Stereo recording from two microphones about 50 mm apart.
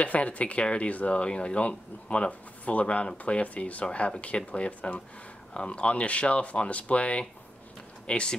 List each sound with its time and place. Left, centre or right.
0.0 s speech: left